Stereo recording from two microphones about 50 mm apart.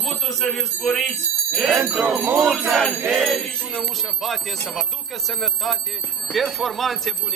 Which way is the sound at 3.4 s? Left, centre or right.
Centre.